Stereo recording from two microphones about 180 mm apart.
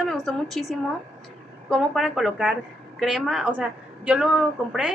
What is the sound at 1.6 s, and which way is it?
A woman's voice, centre (ahead or behind).